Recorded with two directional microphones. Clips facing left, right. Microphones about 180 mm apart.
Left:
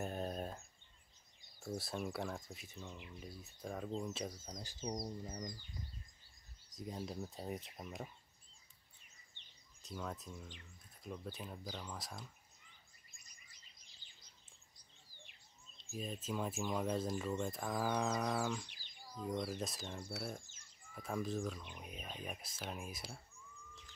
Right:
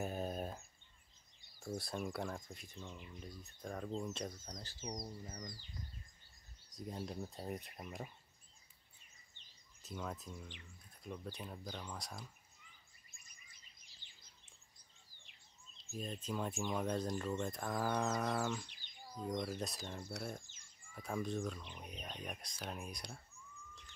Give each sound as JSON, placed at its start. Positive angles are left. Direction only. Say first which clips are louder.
{"t": 0.0, "sound": "a sound", "louder": "right 1 dB", "side_deg": -5}
{"t": 1.6, "sound": "speech", "louder": "even", "side_deg": 5}
{"t": 4.6, "sound": "bird", "louder": "left 6 dB", "side_deg": 15}
{"t": 6.7, "sound": "speech", "louder": "even", "side_deg": 0}
{"t": 9.8, "sound": "speech", "louder": "even", "side_deg": 0}
{"t": 15.8, "sound": "speech", "louder": "even", "side_deg": 0}